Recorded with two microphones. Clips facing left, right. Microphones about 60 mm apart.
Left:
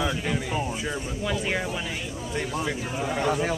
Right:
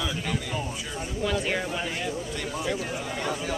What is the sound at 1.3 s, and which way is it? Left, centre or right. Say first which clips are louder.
Speech: even; centre.